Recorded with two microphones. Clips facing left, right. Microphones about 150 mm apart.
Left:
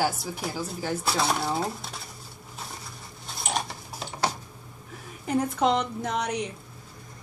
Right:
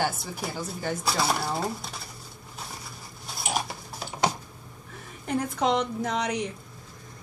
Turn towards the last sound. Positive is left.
turn(degrees=0)  # may be behind; listen again after turning